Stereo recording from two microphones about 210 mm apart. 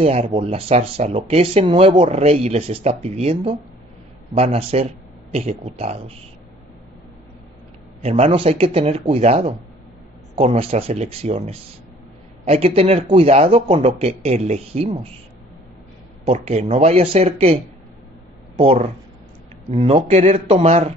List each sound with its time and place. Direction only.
0.0 s speech: 30° right (ahead or behind)
8.0 s speech: 30° right (ahead or behind)
16.3 s speech: 30° right (ahead or behind)
18.6 s speech: 30° right (ahead or behind)